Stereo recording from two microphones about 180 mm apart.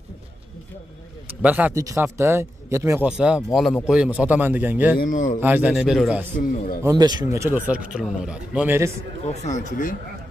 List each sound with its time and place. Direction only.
1.4 s speech: 10° right (ahead or behind)
4.9 s speech: 50° left (ahead or behind)
5.4 s speech: 10° right (ahead or behind)
6.4 s speech: 50° left (ahead or behind)
6.8 s speech: 20° right (ahead or behind)
9.2 s speech: 40° left (ahead or behind)